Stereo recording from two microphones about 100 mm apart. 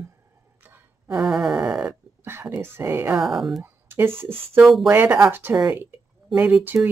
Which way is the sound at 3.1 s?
5° right (ahead or behind).